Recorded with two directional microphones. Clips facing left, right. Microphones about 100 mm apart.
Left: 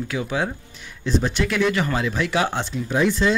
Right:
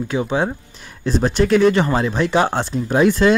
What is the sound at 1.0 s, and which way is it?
Speech, 40° right (ahead or behind).